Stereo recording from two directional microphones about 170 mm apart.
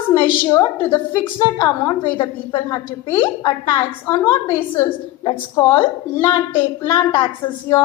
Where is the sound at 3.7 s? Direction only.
15° left (ahead or behind).